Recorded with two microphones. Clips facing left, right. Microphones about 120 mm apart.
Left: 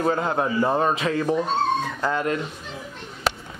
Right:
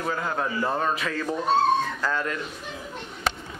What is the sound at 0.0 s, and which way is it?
A man's voice, 30° left (ahead or behind).